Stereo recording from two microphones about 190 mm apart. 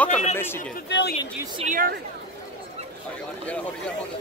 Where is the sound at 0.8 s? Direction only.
65° left (ahead or behind).